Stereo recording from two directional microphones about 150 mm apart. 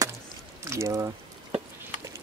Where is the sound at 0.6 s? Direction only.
20° right (ahead or behind).